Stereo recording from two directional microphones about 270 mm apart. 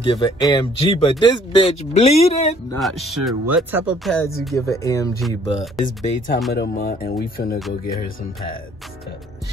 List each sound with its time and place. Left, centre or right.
0.0 s speech: centre
2.8 s speech: centre; by 7.5 s left